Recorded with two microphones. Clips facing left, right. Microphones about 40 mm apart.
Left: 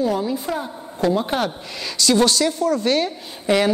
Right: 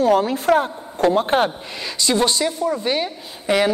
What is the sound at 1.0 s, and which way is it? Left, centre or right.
Speech, right.